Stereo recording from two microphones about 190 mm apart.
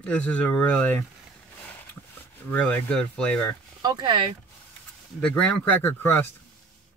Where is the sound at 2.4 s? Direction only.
5° left (ahead or behind).